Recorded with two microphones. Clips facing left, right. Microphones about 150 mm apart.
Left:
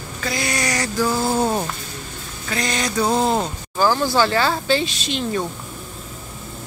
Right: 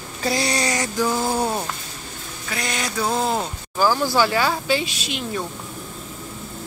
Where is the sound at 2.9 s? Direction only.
15° left (ahead or behind).